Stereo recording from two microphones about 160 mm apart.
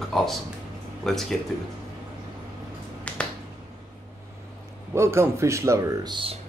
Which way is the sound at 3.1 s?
5° left (ahead or behind).